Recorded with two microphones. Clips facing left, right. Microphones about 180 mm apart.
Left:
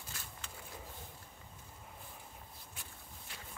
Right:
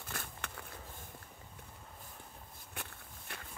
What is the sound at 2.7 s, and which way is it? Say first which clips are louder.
Walk: right 5 dB; 60° right (ahead or behind).